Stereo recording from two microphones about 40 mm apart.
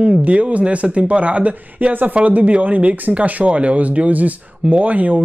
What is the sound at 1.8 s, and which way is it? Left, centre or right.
Speech, right.